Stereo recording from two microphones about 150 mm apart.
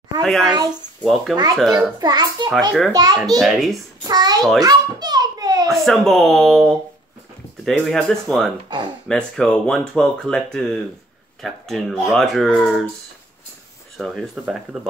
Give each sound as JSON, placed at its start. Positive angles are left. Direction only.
{"t": 0.2, "sound": "a child's voice", "side_deg": 5}
{"t": 1.3, "sound": "a child's voice", "side_deg": -25}
{"t": 1.6, "sound": "speech", "side_deg": -5}
{"t": 2.0, "sound": "a child's voice", "side_deg": -30}
{"t": 3.3, "sound": "speech", "side_deg": 0}
{"t": 4.1, "sound": "a child's voice", "side_deg": -25}
{"t": 4.6, "sound": "a sound", "side_deg": -25}
{"t": 5.7, "sound": "speech", "side_deg": 0}
{"t": 8.6, "sound": "speech", "side_deg": -30}
{"t": 9.0, "sound": "speech", "side_deg": 5}
{"t": 13.9, "sound": "speech", "side_deg": 0}